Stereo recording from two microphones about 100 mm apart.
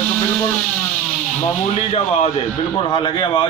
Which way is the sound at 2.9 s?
50° left (ahead or behind).